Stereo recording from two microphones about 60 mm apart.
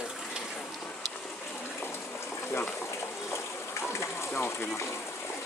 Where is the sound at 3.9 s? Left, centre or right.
Left.